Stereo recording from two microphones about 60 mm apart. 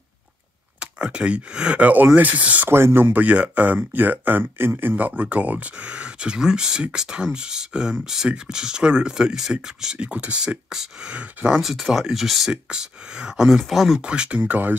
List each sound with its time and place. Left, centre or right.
0.7 s speech: centre
1.8 s speech: right
2.7 s speech: right; by 9.9 s centre
9.9 s speech: right
11.6 s speech: centre
12.6 s speech: centre
14.0 s speech: centre